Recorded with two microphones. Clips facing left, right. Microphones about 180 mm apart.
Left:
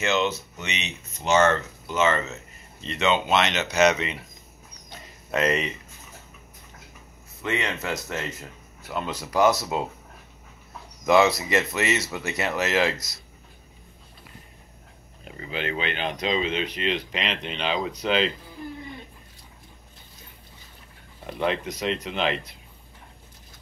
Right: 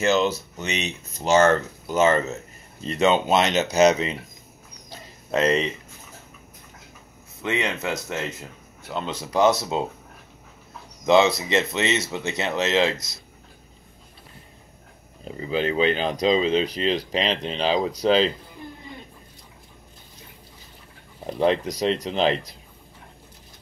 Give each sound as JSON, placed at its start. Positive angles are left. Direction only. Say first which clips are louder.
{"t": 0.0, "sound": "speech", "louder": "right 4 dB", "side_deg": -35}
{"t": 4.8, "sound": "a sound", "louder": "right 3 dB", "side_deg": -30}
{"t": 7.9, "sound": "speech", "louder": "right 2 dB", "side_deg": 0}
{"t": 8.9, "sound": "speech", "louder": "right 1 dB", "side_deg": -25}
{"t": 11.1, "sound": "speech", "louder": "right 1 dB", "side_deg": -25}
{"t": 15.2, "sound": "speech", "louder": "right 6 dB", "side_deg": -30}
{"t": 21.3, "sound": "speech", "louder": "right 5 dB", "side_deg": -35}